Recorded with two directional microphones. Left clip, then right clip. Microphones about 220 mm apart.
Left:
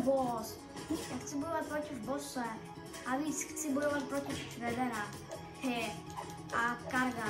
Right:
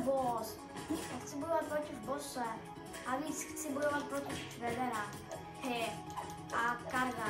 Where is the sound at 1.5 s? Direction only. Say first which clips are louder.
Right 3 dB; 15° right (ahead or behind).